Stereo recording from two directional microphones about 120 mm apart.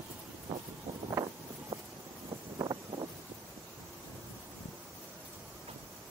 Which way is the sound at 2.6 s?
35° right (ahead or behind).